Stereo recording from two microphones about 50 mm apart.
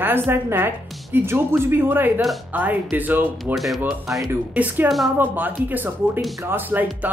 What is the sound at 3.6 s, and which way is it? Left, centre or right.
Speech, centre.